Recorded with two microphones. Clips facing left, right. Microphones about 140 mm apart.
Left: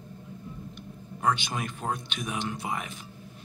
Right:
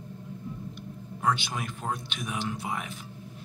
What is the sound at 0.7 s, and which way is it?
Speech, 5° right (ahead or behind).